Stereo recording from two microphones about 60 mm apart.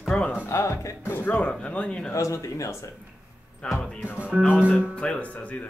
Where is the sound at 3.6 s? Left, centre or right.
Centre.